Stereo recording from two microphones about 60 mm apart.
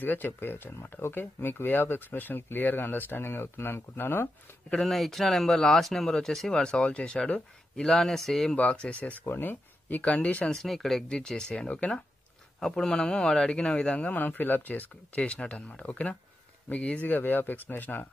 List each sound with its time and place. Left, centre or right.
0.0 s speech: left
4.8 s speech: centre
8.5 s speech: centre
9.2 s speech: left; by 10.5 s centre
10.5 s speech: centre
14.1 s speech: left